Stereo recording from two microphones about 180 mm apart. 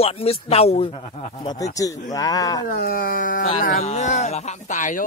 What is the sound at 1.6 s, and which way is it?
Speech, 20° left (ahead or behind).